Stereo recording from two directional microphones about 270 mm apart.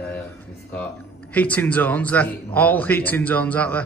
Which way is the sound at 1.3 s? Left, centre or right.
Centre.